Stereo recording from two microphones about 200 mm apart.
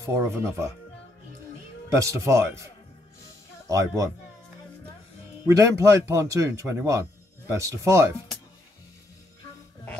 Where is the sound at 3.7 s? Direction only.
15° right (ahead or behind).